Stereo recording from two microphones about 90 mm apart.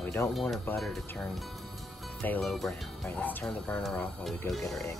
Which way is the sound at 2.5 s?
Centre (ahead or behind).